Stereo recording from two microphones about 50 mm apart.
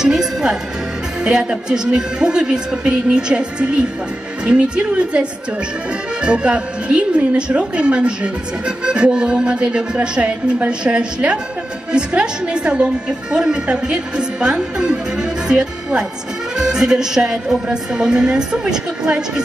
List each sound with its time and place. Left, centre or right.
0.0 s music: centre
1.2 s a woman's voice: centre
6.2 s a woman's voice: right